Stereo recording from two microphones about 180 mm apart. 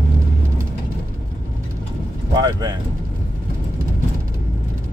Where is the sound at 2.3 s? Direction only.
25° right (ahead or behind).